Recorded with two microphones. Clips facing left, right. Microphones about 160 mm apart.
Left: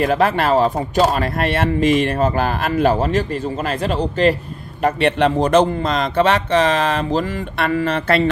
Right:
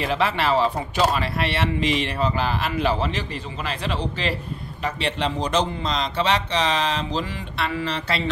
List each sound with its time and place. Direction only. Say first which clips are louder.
0.0 s speech: left 6 dB; 50° left (ahead or behind)
4.8 s speech: left 10 dB; 55° left (ahead or behind)